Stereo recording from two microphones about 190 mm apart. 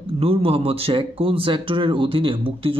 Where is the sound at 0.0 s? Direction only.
30° right (ahead or behind).